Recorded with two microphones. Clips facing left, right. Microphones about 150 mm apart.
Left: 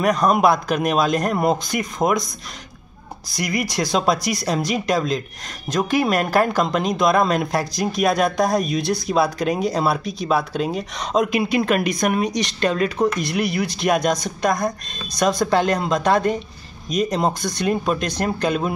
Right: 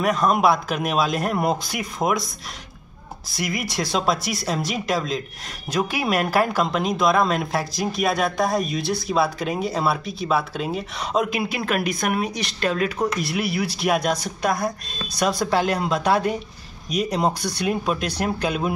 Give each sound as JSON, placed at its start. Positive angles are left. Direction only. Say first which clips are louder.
{"t": 0.0, "sound": "a woman's voice", "louder": "left 2 dB", "side_deg": 0}
{"t": 3.3, "sound": "a woman's voice", "louder": "left 3 dB", "side_deg": 0}